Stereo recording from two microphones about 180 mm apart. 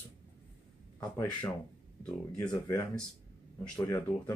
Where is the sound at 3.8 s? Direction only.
10° left (ahead or behind).